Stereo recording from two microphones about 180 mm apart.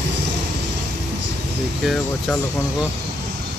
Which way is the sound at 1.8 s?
Centre (ahead or behind).